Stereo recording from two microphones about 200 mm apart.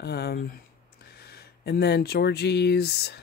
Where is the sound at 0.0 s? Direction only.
55° left (ahead or behind).